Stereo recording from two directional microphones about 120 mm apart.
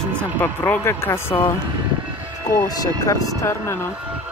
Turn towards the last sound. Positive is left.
turn(degrees=25)  # may be behind; listen again after turning